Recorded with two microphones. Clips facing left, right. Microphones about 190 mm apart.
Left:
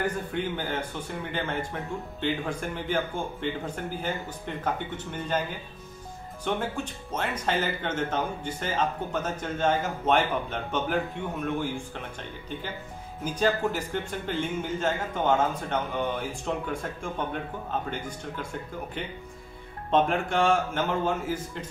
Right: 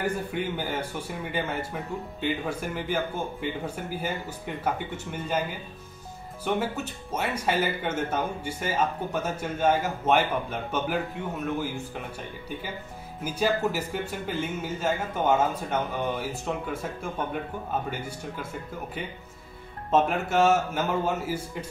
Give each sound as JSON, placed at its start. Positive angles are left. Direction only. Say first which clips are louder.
{"t": 0.0, "sound": "speech", "louder": "even", "side_deg": -10}
{"t": 6.4, "sound": "speech", "louder": "right 2 dB", "side_deg": -10}
{"t": 13.2, "sound": "speech", "louder": "even", "side_deg": -10}
{"t": 19.9, "sound": "speech", "louder": "right 1 dB", "side_deg": -5}